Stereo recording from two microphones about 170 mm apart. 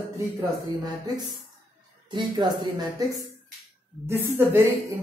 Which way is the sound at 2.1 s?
25° right (ahead or behind).